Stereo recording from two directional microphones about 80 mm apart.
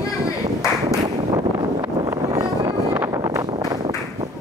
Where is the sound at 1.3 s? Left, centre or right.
Right.